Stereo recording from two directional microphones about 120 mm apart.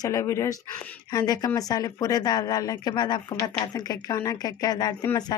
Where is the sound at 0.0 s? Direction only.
25° left (ahead or behind).